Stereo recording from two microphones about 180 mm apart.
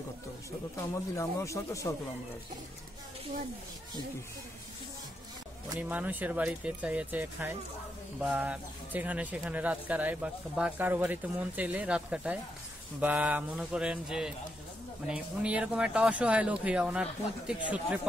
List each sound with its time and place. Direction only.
1.1 s speech: 15° left (ahead or behind)
5.8 s speech: 10° right (ahead or behind)